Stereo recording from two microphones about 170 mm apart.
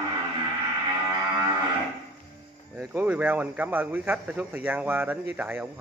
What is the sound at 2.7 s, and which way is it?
Speech, 10° right (ahead or behind).